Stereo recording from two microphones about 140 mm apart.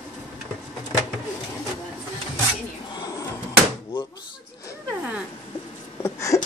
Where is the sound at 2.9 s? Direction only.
30° left (ahead or behind).